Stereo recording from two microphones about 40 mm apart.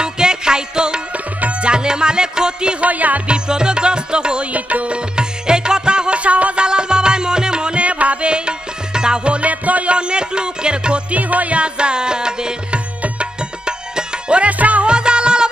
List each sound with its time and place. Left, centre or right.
0.0 s music: centre
1.1 s music: right
1.7 s music: right
2.8 s music: right
3.3 s music: right
4.5 s music: right
6.6 s music: right
9.9 s music: right
11.1 s music: right; by 12.5 s centre
12.7 s music: right
14.4 s music: right
14.9 s music: right